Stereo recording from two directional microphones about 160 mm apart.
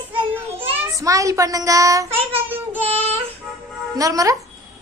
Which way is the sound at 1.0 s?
20° right (ahead or behind).